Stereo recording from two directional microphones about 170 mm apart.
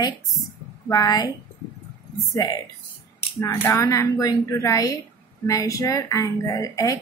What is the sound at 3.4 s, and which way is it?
A woman's voice, 20° left (ahead or behind).